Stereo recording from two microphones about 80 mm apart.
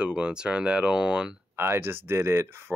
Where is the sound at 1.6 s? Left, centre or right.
Right.